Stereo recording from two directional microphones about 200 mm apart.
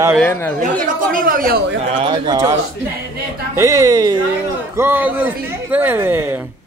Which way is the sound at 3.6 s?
15° right (ahead or behind).